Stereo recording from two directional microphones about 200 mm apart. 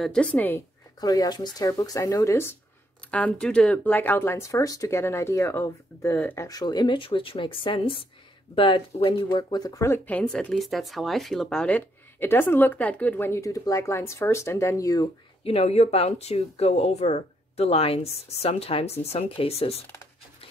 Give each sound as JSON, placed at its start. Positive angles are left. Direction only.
{"t": 0.0, "sound": "speech", "side_deg": 5}
{"t": 15.4, "sound": "speech", "side_deg": 30}